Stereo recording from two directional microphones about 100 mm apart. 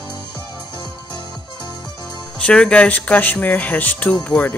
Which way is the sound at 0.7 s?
45° left (ahead or behind).